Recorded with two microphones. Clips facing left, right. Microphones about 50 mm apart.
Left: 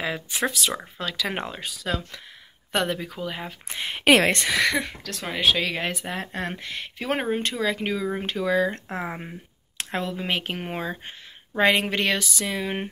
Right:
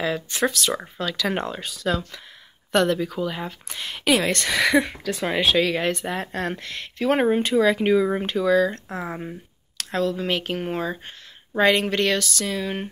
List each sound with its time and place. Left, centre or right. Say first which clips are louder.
0.0 s speech: right 3 dB; centre
3.6 s speech: left 2 dB; left
4.0 s speech: left 3 dB; left
4.5 s speech: right 3 dB; centre
8.2 s speech: right 4 dB; centre